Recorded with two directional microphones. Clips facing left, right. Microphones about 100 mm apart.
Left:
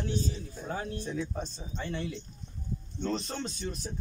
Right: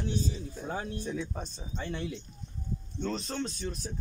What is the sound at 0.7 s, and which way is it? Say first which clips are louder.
Speech: even; 15° right (ahead or behind).